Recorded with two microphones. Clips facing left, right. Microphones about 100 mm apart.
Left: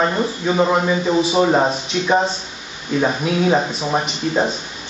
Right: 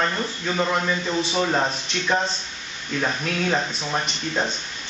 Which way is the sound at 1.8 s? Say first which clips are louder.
Left 6 dB; 5° left (ahead or behind).